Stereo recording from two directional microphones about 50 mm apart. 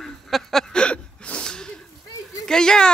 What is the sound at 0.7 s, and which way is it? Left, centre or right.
Gasp, left.